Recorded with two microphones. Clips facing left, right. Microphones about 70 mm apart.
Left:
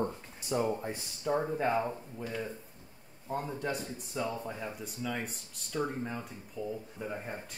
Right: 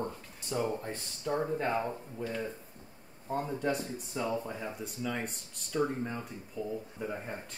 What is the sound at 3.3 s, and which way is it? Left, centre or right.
Speech, centre.